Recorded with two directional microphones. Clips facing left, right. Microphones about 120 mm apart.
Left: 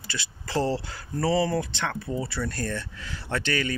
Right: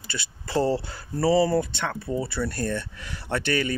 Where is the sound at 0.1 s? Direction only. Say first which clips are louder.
Right 2 dB; 10° right (ahead or behind).